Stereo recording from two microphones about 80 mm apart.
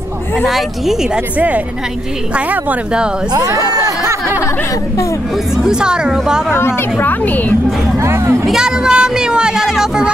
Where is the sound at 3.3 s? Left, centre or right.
Right.